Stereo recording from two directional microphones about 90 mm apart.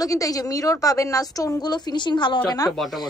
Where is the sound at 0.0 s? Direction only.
40° left (ahead or behind); by 2.4 s 60° left (ahead or behind).